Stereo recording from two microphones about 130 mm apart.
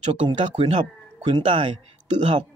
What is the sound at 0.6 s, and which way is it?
Speech, 55° right (ahead or behind).